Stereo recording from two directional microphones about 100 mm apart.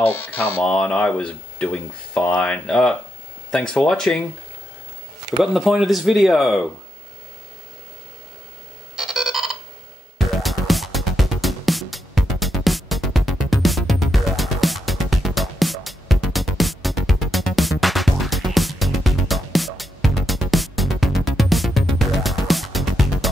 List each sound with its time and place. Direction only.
0.0 s speech: 20° left (ahead or behind)
0.7 s speech: 10° left (ahead or behind)
5.4 s speech: 5° right (ahead or behind)
8.9 s a sound: 5° right (ahead or behind)
10.1 s music: centre (ahead or behind)